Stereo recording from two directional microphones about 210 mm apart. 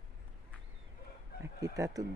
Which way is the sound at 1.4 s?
15° right (ahead or behind).